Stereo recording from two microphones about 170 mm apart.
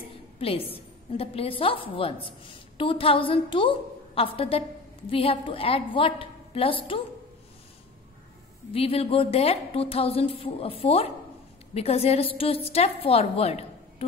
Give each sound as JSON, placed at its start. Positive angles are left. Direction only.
{"t": 0.4, "sound": "a woman's voice", "side_deg": 35}
{"t": 8.7, "sound": "a woman's voice", "side_deg": 35}